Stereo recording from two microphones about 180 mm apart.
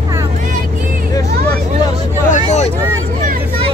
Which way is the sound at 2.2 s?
45° left (ahead or behind).